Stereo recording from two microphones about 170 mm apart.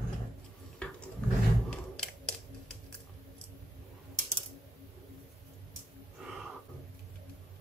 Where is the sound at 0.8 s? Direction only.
5° left (ahead or behind).